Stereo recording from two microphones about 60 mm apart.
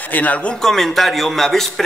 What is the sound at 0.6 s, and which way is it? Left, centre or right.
A man's voice, centre.